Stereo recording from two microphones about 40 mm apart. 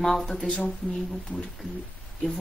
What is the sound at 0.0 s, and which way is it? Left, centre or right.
A woman's voice, centre.